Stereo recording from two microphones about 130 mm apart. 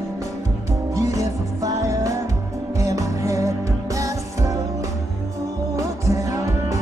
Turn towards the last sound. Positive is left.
turn(degrees=-25)  # may be behind; listen again after turning